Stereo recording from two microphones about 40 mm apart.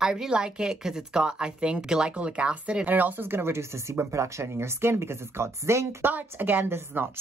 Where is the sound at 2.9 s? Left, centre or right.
Right.